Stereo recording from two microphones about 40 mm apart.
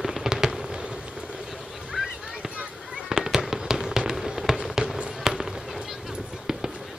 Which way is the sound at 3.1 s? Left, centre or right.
Centre.